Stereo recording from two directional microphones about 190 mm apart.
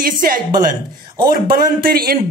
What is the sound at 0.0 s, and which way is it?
A man's voice, 50° right (ahead or behind).